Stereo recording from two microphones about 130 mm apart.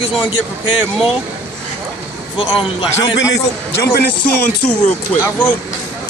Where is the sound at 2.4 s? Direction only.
40° left (ahead or behind).